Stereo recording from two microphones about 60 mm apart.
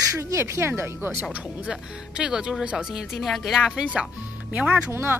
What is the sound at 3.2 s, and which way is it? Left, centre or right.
Speech, centre.